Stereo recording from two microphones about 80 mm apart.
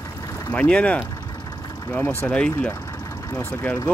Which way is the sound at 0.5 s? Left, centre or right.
Centre.